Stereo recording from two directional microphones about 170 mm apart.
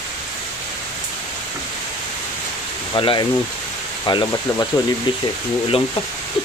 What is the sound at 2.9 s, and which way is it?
Speech, 30° left (ahead or behind).